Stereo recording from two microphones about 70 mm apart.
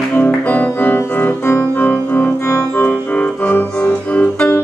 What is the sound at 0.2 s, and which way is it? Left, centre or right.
Music, left.